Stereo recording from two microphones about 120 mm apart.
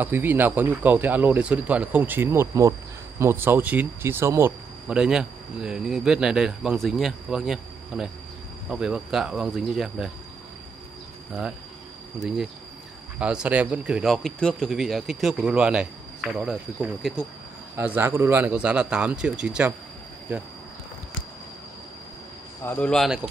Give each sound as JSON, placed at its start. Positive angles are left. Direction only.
{"t": 0.0, "sound": "speech", "side_deg": -15}
{"t": 4.8, "sound": "speech", "side_deg": -5}
{"t": 12.2, "sound": "speech", "side_deg": -5}
{"t": 17.7, "sound": "speech", "side_deg": -15}
{"t": 22.6, "sound": "speech", "side_deg": 20}
{"t": 22.8, "sound": "speech", "side_deg": 5}